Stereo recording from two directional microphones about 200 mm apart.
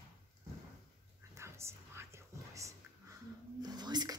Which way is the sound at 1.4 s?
15° right (ahead or behind).